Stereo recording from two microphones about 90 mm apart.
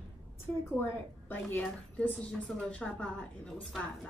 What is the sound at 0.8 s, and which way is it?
A woman's voice, 20° left (ahead or behind).